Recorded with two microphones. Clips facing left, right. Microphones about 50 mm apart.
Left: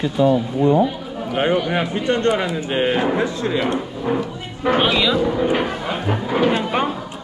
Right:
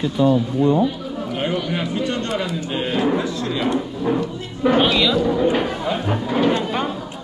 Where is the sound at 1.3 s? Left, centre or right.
Left.